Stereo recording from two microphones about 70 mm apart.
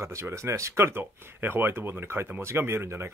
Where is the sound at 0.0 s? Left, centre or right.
Right.